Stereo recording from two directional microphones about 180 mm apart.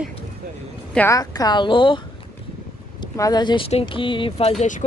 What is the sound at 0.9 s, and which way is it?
A woman's voice, 15° left (ahead or behind).